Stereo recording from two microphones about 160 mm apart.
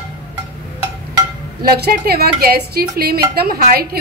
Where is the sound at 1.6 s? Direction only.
75° right (ahead or behind).